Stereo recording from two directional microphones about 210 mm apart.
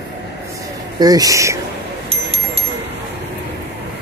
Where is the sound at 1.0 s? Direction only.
15° right (ahead or behind).